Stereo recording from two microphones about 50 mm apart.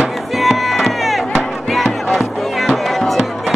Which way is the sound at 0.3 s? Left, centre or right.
Centre.